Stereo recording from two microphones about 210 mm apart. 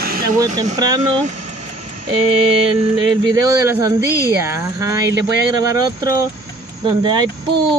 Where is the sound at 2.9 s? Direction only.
20° right (ahead or behind).